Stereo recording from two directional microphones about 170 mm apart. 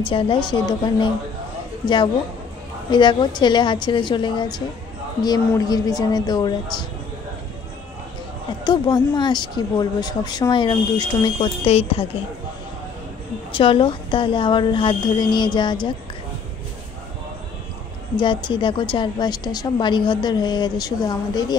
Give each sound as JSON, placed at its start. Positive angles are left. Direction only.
{"t": 0.0, "sound": "a woman's voice", "side_deg": 30}
{"t": 2.9, "sound": "a woman's voice", "side_deg": 25}
{"t": 8.5, "sound": "a woman's voice", "side_deg": 25}
{"t": 13.5, "sound": "a woman's voice", "side_deg": 30}
{"t": 18.1, "sound": "a woman's voice", "side_deg": 25}